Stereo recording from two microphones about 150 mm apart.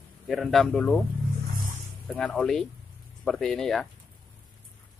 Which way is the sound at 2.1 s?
5° left (ahead or behind).